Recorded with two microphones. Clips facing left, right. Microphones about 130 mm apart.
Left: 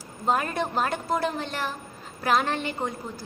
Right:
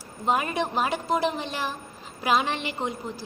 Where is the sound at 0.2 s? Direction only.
15° right (ahead or behind).